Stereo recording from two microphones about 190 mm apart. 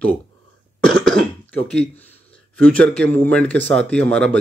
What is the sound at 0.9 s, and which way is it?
Throat clearing, 5° left (ahead or behind).